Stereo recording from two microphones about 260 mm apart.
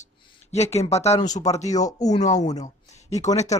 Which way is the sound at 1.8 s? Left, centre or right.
Centre.